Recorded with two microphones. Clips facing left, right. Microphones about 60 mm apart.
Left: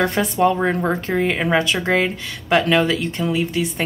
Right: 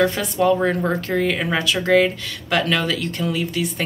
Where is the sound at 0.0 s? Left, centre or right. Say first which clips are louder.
Left 1 dB; left.